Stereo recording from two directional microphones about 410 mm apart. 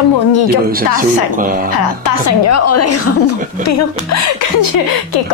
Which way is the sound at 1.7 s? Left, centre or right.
Left.